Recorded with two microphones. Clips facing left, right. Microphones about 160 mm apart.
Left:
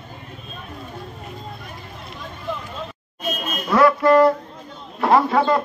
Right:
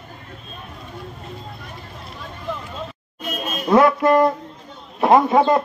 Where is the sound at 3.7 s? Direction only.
25° right (ahead or behind).